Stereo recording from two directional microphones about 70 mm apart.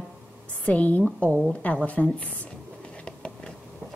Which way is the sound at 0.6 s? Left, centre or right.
Left.